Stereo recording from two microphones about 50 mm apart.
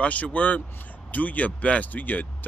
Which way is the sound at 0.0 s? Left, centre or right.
Left.